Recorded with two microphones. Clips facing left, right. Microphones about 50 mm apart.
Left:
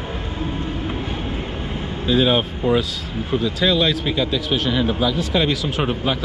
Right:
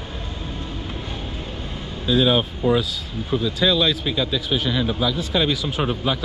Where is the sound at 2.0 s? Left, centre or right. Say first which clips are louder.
Left 1 dB; left.